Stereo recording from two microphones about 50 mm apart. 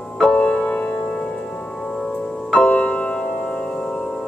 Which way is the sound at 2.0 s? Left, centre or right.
Centre.